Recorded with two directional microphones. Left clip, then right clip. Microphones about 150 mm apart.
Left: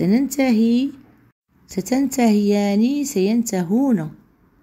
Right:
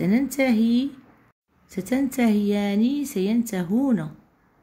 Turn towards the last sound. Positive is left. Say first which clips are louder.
# left 4 dB
turn(degrees=25)  # may be behind; listen again after turning